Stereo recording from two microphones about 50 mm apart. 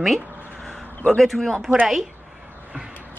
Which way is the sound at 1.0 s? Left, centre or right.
Centre.